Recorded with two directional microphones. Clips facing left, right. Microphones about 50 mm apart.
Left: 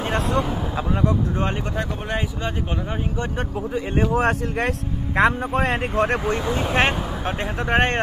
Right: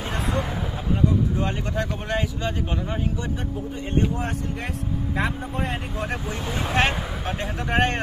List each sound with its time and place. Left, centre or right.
1.8 s speech: centre
4.1 s speech: left
6.7 s speech: left